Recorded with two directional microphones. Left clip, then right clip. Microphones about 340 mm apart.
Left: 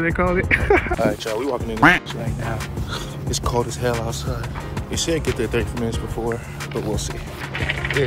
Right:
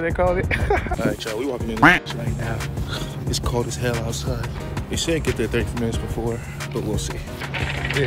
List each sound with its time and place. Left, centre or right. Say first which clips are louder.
0.0 s speech: even; right
1.0 s speech: left 3 dB; centre
3.3 s speech: left 3 dB; centre